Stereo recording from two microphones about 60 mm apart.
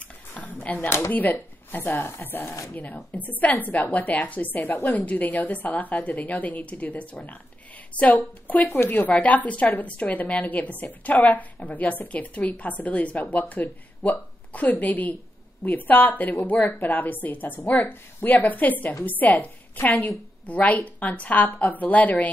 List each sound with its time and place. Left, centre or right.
0.4 s a sound: left
0.8 s speech: left
1.1 s a woman's voice: left
8.6 s a woman's voice: left